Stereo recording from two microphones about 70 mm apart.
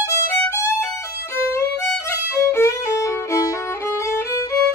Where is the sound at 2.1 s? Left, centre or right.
Left.